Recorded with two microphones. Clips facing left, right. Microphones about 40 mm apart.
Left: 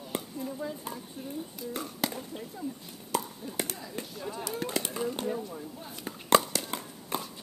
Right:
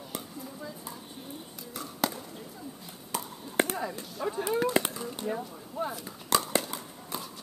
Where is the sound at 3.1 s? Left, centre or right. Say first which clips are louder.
Right 3 dB; right.